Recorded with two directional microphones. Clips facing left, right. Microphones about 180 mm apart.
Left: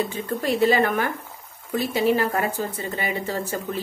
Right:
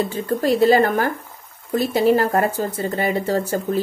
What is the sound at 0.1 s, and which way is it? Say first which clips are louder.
A woman's voice: right 5 dB; 35° right (ahead or behind).